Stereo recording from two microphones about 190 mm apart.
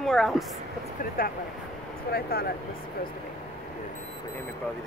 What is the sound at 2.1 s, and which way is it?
Speech, 55° left (ahead or behind).